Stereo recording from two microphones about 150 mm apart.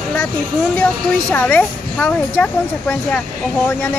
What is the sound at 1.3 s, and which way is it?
A child's voice, 10° left (ahead or behind).